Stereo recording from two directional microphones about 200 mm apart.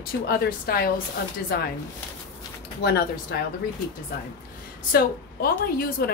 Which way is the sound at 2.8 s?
55° left (ahead or behind).